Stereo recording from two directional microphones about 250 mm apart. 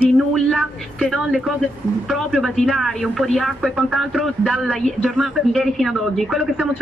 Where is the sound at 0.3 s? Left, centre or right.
Centre.